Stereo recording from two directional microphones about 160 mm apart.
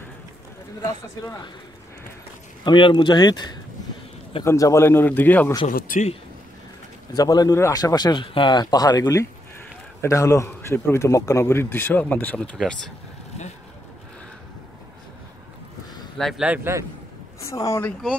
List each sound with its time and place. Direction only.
2.6 s a man's voice: 30° left (ahead or behind); by 5.5 s 10° left (ahead or behind)
5.7 s speech: 60° left (ahead or behind)
7.2 s a man's voice: 25° left (ahead or behind); by 12.7 s 5° left (ahead or behind)
16.2 s speech: centre (ahead or behind)
17.4 s speech: 20° left (ahead or behind)